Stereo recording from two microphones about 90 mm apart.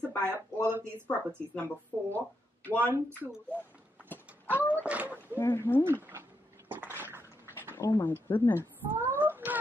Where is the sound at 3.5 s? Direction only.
20° right (ahead or behind).